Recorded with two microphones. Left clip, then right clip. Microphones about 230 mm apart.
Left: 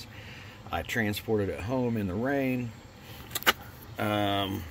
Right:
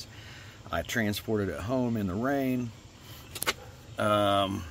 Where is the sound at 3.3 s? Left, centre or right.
Left.